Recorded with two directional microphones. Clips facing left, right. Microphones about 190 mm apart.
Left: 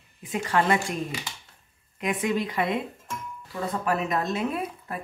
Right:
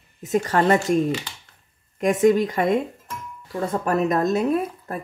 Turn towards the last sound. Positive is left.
turn(degrees=-40)  # may be behind; listen again after turning